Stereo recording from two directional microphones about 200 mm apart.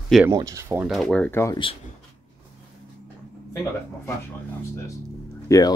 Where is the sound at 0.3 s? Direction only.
15° right (ahead or behind).